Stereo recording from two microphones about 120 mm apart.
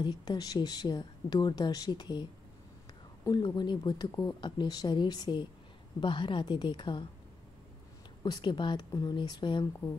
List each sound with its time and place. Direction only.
0.0 s speech: 35° left (ahead or behind)
3.3 s speech: 35° left (ahead or behind)
8.2 s speech: 40° left (ahead or behind)